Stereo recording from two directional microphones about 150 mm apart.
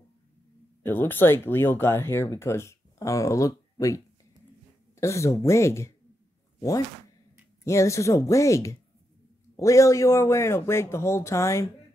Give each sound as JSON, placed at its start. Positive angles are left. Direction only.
{"t": 0.8, "sound": "speech", "side_deg": 15}
{"t": 7.6, "sound": "speech", "side_deg": 20}